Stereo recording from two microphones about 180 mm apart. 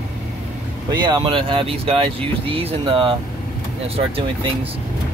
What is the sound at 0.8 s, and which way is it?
Speech, 25° right (ahead or behind).